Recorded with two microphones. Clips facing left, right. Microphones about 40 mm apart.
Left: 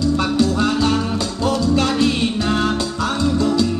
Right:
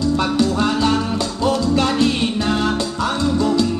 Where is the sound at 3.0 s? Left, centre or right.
Centre.